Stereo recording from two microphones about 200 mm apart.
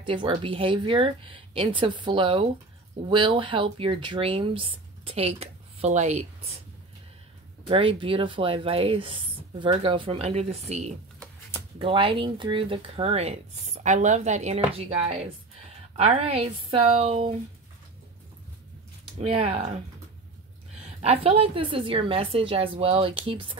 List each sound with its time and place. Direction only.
0.0 s speech: 25° right (ahead or behind)
7.6 s speech: 25° right (ahead or behind)
19.1 s speech: 30° right (ahead or behind)
21.0 s speech: 30° right (ahead or behind)